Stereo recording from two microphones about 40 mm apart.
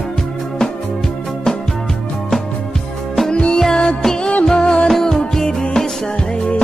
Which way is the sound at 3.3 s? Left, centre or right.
Left.